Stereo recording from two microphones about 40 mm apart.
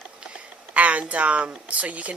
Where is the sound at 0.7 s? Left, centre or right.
Right.